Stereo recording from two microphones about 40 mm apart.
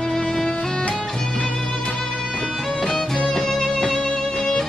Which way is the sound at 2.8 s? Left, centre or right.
Centre.